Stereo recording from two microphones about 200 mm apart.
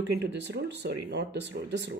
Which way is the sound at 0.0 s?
60° right (ahead or behind).